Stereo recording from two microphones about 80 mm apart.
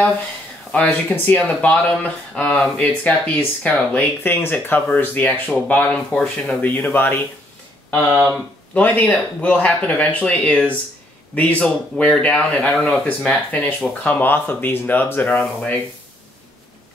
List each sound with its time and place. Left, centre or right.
0.8 s speech: left
6.6 s speech: left
8.3 s speech: centre
15.2 s speech: centre